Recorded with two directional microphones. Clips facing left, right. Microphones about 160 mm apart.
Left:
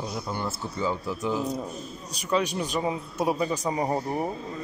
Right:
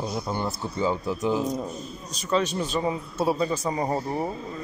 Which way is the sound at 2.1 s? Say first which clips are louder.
Right 1 dB; 15° left (ahead or behind).